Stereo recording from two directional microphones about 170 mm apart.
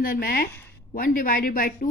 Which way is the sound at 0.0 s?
60° left (ahead or behind).